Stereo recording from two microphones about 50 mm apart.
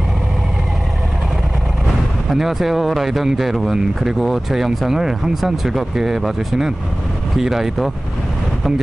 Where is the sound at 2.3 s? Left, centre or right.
Centre.